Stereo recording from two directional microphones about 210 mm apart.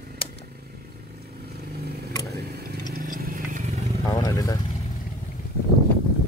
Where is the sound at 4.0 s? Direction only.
15° left (ahead or behind).